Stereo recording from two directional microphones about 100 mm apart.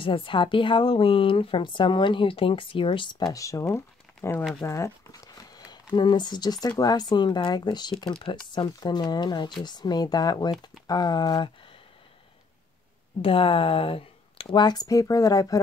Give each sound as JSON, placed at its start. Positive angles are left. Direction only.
{"t": 0.0, "sound": "speech", "side_deg": 60}
{"t": 3.3, "sound": "speech", "side_deg": 35}
{"t": 4.6, "sound": "crumpling", "side_deg": 30}
{"t": 5.9, "sound": "speech", "side_deg": 50}
{"t": 13.2, "sound": "speech", "side_deg": 65}
{"t": 14.6, "sound": "speech", "side_deg": 40}